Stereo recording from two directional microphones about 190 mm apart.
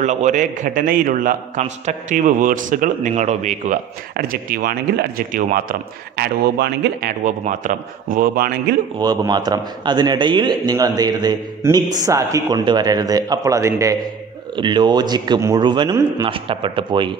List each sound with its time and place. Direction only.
0.0 s a man's voice: 40° right (ahead or behind)
4.1 s speech: 50° right (ahead or behind)
9.0 s a man's voice: 20° right (ahead or behind)